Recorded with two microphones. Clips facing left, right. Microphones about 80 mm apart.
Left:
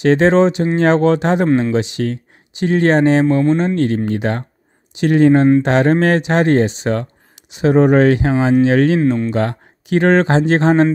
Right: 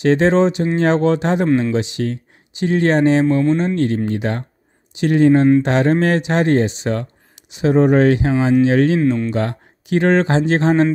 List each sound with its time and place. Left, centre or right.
0.0 s speech: left
3.7 s speech: left
4.9 s speech: left
5.6 s speech: left
7.6 s speech: left
8.3 s speech: left
8.6 s speech: left
9.0 s speech: centre
9.3 s speech: left